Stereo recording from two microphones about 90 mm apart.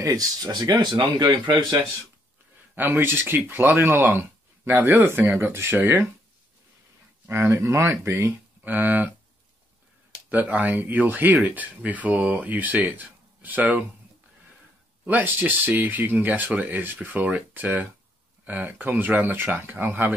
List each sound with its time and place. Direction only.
0.0 s speech: 45° right (ahead or behind)
2.7 s speech: 20° right (ahead or behind)
7.2 s speech: 30° right (ahead or behind)
8.6 s speech: 20° right (ahead or behind)
10.3 s speech: 20° right (ahead or behind)
15.0 s speech: 20° right (ahead or behind)